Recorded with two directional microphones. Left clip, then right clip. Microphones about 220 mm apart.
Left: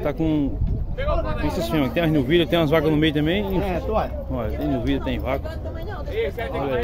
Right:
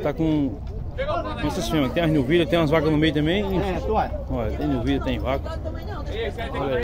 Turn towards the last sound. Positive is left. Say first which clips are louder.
# left 3 dB
turn(degrees=50)  # may be behind; listen again after turning